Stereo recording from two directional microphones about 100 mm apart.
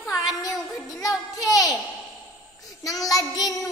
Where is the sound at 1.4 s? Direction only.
35° left (ahead or behind).